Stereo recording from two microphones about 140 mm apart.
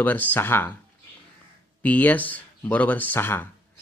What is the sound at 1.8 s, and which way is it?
Speech, 10° left (ahead or behind).